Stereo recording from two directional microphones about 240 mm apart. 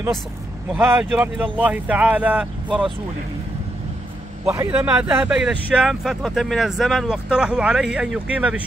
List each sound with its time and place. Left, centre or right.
0.7 s speech: centre
4.5 s speech: centre